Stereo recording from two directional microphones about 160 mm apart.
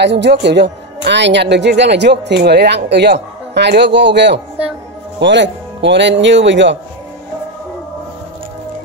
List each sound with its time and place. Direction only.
0.0 s speech: 90° right